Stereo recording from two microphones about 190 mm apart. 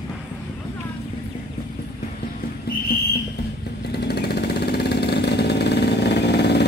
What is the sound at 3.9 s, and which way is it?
Vehicle, 60° left (ahead or behind).